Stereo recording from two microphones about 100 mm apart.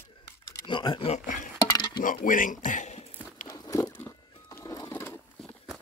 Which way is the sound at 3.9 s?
25° left (ahead or behind).